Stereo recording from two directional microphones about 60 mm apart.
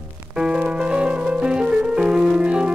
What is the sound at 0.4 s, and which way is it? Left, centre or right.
Music, centre.